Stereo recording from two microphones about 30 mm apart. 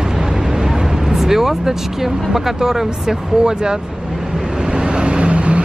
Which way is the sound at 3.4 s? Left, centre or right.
Right.